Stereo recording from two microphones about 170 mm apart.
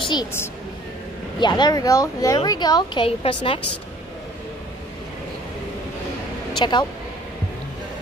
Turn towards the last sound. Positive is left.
turn(degrees=25)  # may be behind; listen again after turning